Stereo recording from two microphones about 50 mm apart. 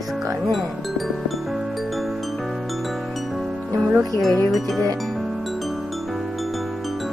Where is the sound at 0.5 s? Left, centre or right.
Centre.